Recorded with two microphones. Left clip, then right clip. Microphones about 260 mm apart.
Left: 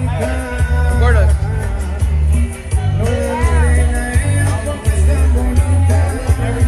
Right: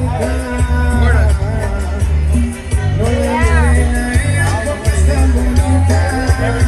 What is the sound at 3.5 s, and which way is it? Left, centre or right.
Music, right.